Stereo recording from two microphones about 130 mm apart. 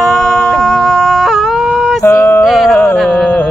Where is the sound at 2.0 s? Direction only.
25° left (ahead or behind).